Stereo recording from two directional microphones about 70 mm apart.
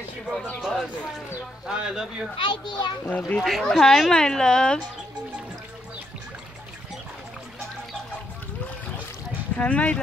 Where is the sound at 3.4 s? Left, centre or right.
Centre.